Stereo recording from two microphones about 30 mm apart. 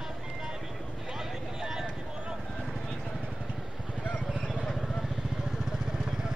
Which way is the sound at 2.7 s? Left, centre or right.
Left.